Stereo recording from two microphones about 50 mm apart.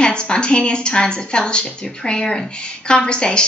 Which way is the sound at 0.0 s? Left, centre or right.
Centre.